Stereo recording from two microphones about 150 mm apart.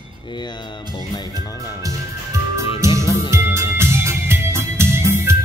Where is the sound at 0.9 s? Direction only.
30° left (ahead or behind).